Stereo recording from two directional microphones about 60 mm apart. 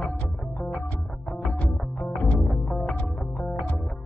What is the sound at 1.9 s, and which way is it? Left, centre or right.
Music, left.